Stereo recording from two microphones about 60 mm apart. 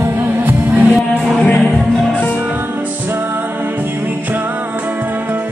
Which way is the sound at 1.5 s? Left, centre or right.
Centre.